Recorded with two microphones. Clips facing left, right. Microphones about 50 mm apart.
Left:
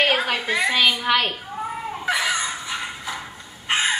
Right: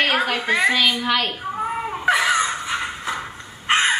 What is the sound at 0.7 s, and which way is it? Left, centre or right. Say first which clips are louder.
Speech: even; centre.